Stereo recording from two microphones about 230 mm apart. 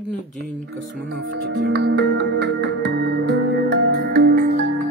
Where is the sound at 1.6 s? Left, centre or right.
Right.